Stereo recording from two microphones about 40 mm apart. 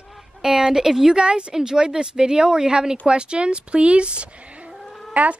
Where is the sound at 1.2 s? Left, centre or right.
Right.